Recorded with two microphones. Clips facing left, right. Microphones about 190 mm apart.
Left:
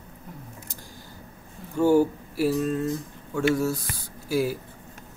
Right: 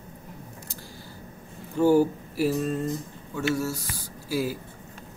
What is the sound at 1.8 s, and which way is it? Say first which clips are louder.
Speech: even; 10° right (ahead or behind).